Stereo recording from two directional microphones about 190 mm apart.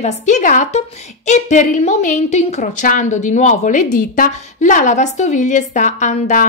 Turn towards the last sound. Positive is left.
turn(degrees=40)  # may be behind; listen again after turning